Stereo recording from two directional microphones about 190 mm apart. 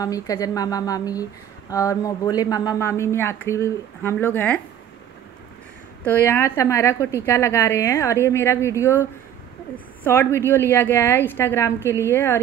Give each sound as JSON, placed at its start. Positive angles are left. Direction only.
{"t": 0.0, "sound": "speech", "side_deg": 20}
{"t": 6.0, "sound": "speech", "side_deg": 10}
{"t": 10.0, "sound": "speech", "side_deg": 10}